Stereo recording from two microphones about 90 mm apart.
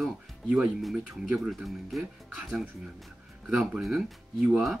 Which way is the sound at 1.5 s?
Centre (ahead or behind).